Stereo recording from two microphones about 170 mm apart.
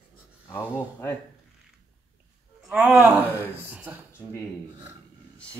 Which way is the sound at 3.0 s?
5° right (ahead or behind).